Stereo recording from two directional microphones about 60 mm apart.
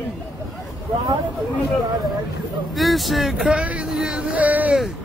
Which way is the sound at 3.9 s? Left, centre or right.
Centre.